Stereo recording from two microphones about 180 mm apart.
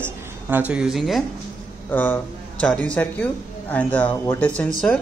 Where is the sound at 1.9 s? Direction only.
10° left (ahead or behind).